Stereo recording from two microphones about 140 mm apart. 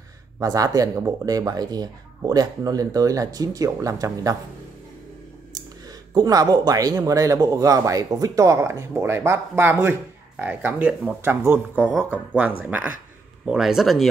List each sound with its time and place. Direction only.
0.4 s speech: 25° right (ahead or behind)
6.1 s speech: 25° right (ahead or behind); by 14.0 s centre (ahead or behind)